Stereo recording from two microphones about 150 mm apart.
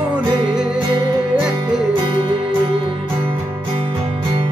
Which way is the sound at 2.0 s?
30° right (ahead or behind).